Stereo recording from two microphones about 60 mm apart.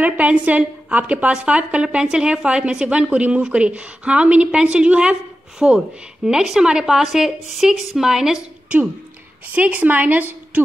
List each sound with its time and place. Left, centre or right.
0.0 s a woman's voice: right
6.2 s a woman's voice: centre
9.5 s a woman's voice: right